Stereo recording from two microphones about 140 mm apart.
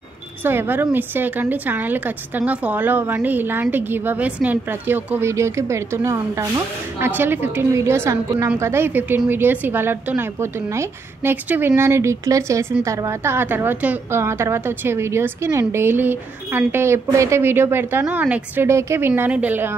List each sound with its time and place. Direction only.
0.4 s a woman's voice: 15° right (ahead or behind)